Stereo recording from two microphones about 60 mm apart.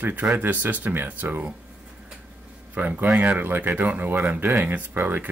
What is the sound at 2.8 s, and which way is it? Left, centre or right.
Speech, right.